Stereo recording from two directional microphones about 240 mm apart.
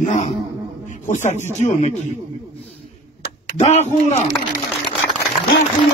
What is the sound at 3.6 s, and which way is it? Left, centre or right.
Speech, left.